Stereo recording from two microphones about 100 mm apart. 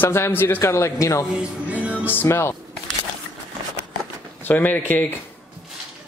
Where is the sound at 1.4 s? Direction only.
15° right (ahead or behind).